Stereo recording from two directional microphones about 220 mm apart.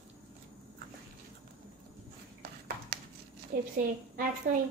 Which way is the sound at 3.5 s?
40° right (ahead or behind).